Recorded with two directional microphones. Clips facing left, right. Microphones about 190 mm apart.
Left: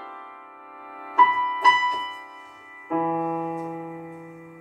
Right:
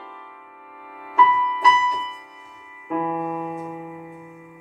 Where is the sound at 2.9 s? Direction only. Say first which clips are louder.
Left 1 dB; 30° left (ahead or behind).